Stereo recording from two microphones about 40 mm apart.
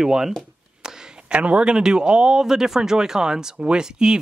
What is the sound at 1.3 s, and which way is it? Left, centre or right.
Speech, right.